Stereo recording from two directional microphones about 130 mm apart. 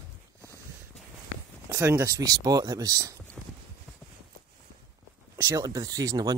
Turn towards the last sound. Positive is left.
turn(degrees=-30)  # may be behind; listen again after turning